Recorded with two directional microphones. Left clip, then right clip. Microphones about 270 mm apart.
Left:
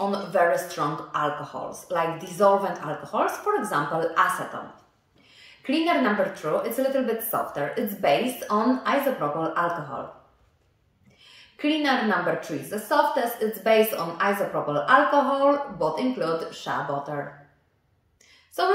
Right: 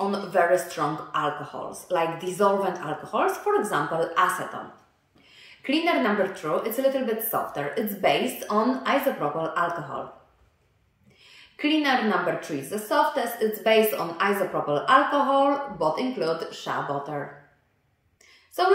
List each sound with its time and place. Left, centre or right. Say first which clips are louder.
0.1 s speech: right 1 dB; centre
11.5 s speech: right 1 dB; centre
18.6 s speech: right 1 dB; centre